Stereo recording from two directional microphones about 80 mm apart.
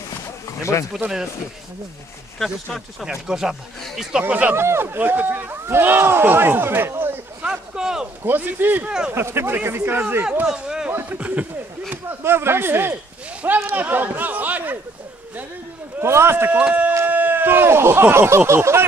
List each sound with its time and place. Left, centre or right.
0.9 s speech: centre
2.3 s speech: centre
3.1 s speech: centre
4.2 s speech: centre
4.6 s speech: right
7.4 s a sound: centre
8.2 s speech: right; by 10.9 s centre
10.9 s a sound: right
11.1 s speech: centre
11.9 s speech: right
16.0 s a man's voice: right
16.5 s a man's voice: centre